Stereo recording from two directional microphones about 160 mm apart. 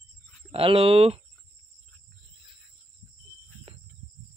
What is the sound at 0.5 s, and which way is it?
Speech, 35° right (ahead or behind).